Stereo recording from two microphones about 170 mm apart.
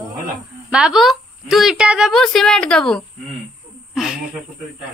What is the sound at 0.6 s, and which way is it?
A woman's voice, 5° right (ahead or behind).